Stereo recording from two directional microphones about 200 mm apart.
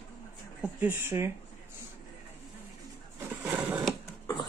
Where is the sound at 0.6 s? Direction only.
10° right (ahead or behind).